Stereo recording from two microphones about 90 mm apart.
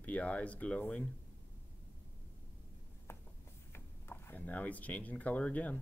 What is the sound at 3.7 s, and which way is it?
Speech, 20° left (ahead or behind).